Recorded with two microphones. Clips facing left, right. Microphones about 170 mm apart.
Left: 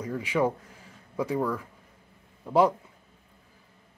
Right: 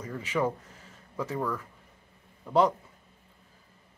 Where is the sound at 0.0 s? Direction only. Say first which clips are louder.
Left 3 dB; 10° left (ahead or behind).